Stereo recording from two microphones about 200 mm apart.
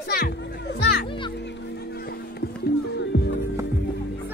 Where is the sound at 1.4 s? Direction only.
50° left (ahead or behind).